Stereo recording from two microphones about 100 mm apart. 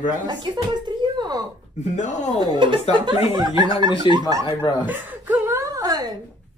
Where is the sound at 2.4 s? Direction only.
50° right (ahead or behind).